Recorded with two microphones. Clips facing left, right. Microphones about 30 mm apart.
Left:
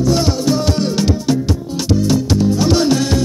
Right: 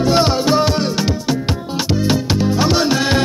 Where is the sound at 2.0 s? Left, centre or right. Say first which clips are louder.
Left 2 dB; right.